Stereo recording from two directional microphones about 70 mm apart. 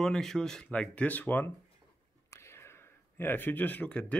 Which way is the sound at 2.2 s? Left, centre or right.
Left.